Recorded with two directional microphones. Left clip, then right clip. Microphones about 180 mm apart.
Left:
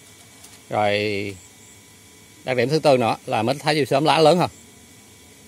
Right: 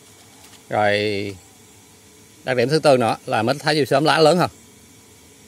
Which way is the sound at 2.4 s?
15° right (ahead or behind).